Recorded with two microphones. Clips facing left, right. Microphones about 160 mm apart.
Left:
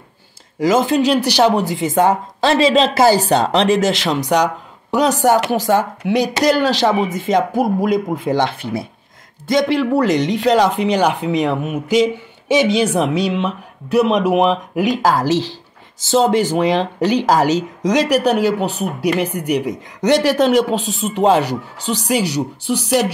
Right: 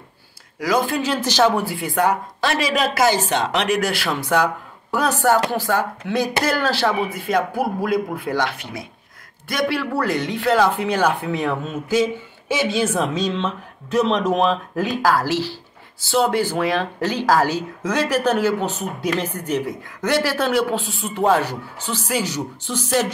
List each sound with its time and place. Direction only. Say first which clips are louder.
0.6 s speech: left 6 dB; 20° left (ahead or behind)